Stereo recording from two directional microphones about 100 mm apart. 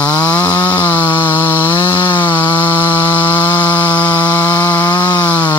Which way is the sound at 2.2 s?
55° left (ahead or behind).